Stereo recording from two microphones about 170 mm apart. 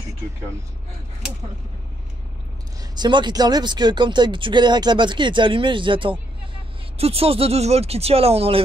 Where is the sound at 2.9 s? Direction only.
25° right (ahead or behind).